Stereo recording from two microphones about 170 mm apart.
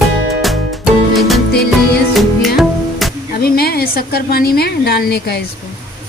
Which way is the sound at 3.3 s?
65° left (ahead or behind).